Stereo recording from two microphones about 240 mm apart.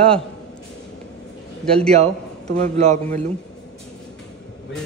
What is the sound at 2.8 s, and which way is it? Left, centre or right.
Speech, right.